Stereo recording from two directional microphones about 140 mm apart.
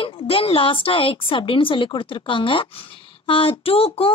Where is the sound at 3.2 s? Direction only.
40° left (ahead or behind).